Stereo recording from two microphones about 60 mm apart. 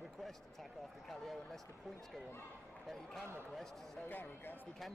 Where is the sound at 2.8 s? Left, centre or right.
Centre.